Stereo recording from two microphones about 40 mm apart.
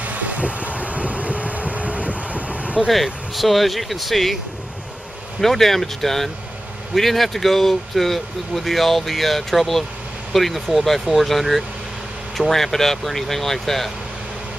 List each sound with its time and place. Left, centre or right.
0.0 s vehicle: right
2.9 s speech: centre
5.4 s speech: centre